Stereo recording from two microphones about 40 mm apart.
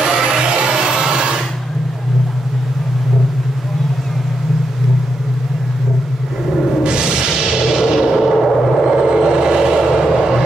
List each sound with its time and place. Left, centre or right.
0.0 s music: centre
6.8 s music: right